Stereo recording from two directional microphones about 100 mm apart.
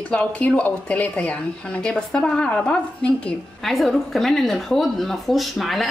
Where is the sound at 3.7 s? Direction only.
Centre (ahead or behind).